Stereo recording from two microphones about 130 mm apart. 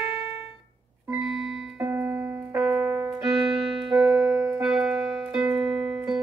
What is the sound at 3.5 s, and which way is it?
Music, 5° right (ahead or behind).